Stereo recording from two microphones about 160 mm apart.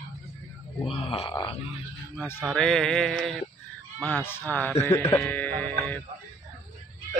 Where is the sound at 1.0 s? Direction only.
35° left (ahead or behind).